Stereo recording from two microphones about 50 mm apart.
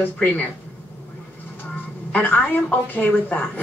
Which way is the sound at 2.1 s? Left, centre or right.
Left.